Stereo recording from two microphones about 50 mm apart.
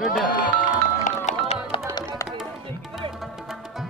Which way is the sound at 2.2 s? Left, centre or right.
Left.